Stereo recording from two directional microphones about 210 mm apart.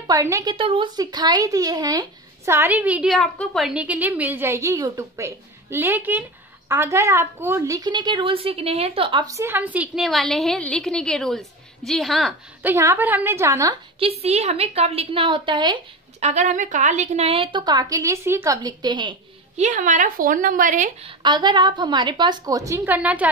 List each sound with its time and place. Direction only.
0.0 s speech: 15° right (ahead or behind)
12.7 s speech: 10° right (ahead or behind)
14.2 s a woman's voice: 30° right (ahead or behind)
21.2 s a woman's voice: 20° right (ahead or behind)